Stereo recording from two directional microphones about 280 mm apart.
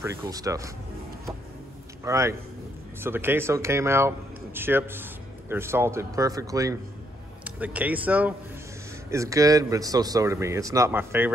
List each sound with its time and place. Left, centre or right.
0.0 s speech: centre
2.0 s speech: centre